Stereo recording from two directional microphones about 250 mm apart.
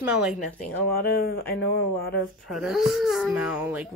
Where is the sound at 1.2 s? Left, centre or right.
Left.